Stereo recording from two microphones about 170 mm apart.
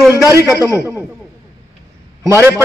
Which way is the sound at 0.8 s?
15° right (ahead or behind).